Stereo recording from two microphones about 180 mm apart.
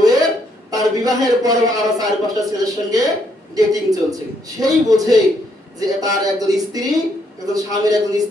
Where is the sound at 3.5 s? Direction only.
20° right (ahead or behind).